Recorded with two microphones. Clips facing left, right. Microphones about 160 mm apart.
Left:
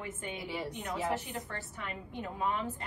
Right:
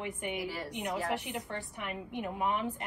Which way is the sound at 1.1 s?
15° right (ahead or behind).